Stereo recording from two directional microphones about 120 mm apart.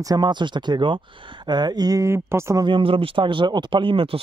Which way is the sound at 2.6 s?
45° right (ahead or behind).